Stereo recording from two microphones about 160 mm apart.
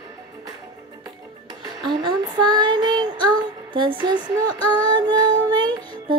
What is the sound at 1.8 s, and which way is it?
Child singing, 30° right (ahead or behind).